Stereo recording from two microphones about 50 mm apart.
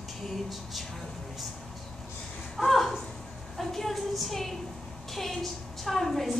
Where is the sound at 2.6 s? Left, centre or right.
Centre.